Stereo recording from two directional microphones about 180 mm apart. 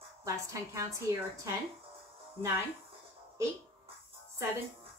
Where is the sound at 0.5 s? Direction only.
15° right (ahead or behind).